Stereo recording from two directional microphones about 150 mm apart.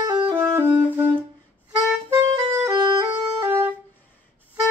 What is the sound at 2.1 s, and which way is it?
Music, 20° right (ahead or behind).